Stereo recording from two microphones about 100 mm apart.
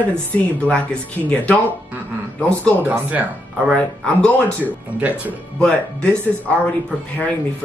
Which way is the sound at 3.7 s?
10° left (ahead or behind).